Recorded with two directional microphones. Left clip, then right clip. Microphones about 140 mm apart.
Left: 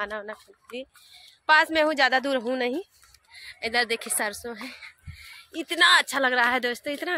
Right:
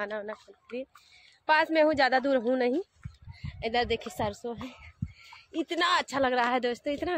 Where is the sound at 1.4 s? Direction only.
10° right (ahead or behind).